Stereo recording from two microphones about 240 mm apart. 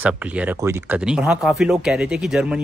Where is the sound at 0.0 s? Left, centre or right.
Centre.